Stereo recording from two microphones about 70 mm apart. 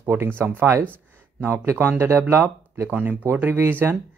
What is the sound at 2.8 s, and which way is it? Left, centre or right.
Speech, centre.